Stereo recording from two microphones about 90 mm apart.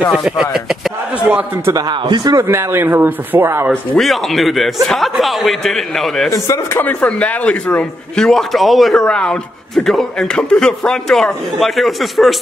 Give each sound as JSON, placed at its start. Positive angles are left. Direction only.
{"t": 0.0, "sound": "a man's voice", "side_deg": 0}
{"t": 1.7, "sound": "a man's voice", "side_deg": -50}
{"t": 2.4, "sound": "speech", "side_deg": -25}
{"t": 3.9, "sound": "a man's voice", "side_deg": 0}
{"t": 6.3, "sound": "speech", "side_deg": 35}
{"t": 6.8, "sound": "speech", "side_deg": 20}